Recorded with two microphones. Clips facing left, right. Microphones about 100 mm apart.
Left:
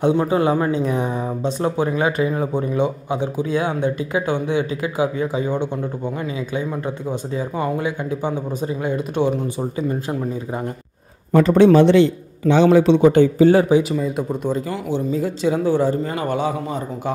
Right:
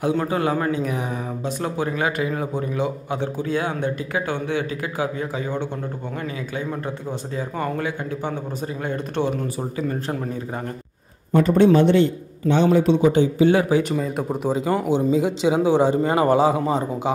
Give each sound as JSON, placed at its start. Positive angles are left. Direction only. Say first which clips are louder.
{"t": 0.0, "sound": "speech", "louder": "left 4 dB", "side_deg": 25}
{"t": 11.3, "sound": "a man's voice", "louder": "left 3 dB", "side_deg": 90}
{"t": 13.4, "sound": "speech", "louder": "left 3 dB", "side_deg": 35}
{"t": 13.8, "sound": "speech", "louder": "left 2 dB", "side_deg": 0}
{"t": 14.7, "sound": "speech", "louder": "right 3 dB", "side_deg": -45}
{"t": 15.4, "sound": "a man's voice", "louder": "left 1 dB", "side_deg": -15}
{"t": 16.3, "sound": "a man's voice", "louder": "right 4 dB", "side_deg": -30}